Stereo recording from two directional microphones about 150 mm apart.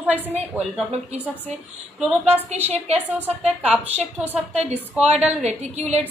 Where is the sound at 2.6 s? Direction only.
45° right (ahead or behind).